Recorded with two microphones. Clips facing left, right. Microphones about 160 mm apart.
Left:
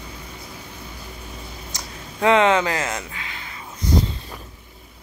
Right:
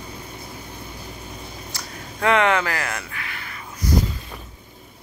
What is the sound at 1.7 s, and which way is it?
Speech, 20° left (ahead or behind).